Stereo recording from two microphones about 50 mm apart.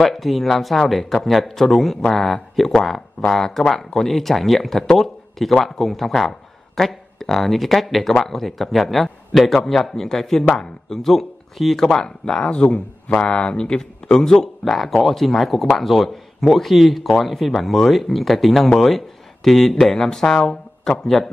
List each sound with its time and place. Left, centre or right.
0.0 s speech: centre
12.4 s speech: left